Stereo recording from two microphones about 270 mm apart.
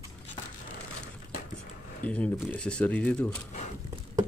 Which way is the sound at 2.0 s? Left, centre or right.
Centre.